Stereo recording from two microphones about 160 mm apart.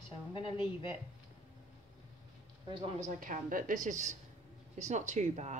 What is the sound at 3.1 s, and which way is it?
A woman's voice, 55° right (ahead or behind).